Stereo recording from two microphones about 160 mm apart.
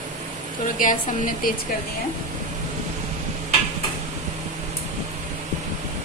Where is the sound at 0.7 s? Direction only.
55° left (ahead or behind).